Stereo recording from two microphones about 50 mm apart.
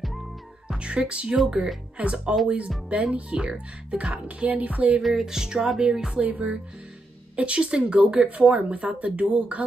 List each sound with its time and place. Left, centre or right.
0.7 s speech: right
4.5 s music: right
5.0 s speech: centre; by 9.6 s right